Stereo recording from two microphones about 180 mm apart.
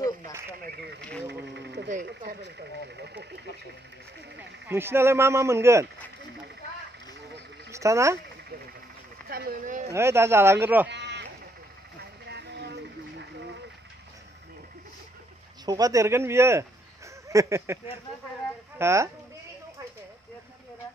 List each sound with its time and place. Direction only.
1.5 s a sound: 70° right (ahead or behind)
2.0 s speech: 70° right (ahead or behind)
4.6 s speech: 15° right (ahead or behind)
7.7 s speech: 15° right (ahead or behind)
9.3 s speech: 55° right (ahead or behind)
9.8 s speech: 15° right (ahead or behind)
10.9 s a sound: 75° right (ahead or behind)
12.0 s vehicle: 70° right (ahead or behind)
15.6 s speech: 20° right (ahead or behind)
18.8 s speech: 15° right (ahead or behind)